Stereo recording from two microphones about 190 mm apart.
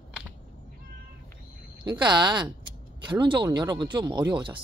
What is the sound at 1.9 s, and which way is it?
Speech, 25° right (ahead or behind).